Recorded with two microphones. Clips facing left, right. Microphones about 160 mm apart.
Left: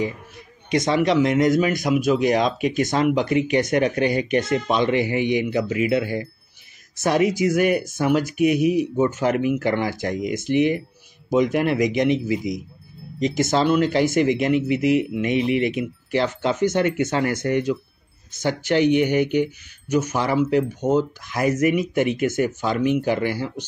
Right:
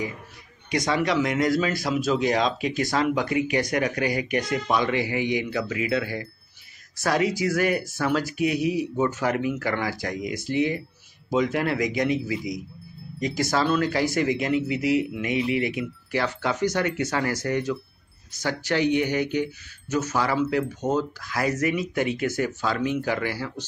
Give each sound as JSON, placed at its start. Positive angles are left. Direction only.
{"t": 0.7, "sound": "speech", "side_deg": 20}